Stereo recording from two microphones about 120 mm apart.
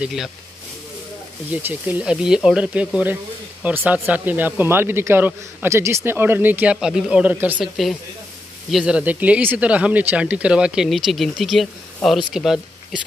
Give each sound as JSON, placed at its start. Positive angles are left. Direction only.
{"t": 0.0, "sound": "speech", "side_deg": -5}
{"t": 1.5, "sound": "speech", "side_deg": -15}